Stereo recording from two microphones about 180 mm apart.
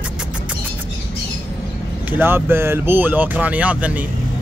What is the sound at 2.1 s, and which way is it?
Speech, 10° right (ahead or behind).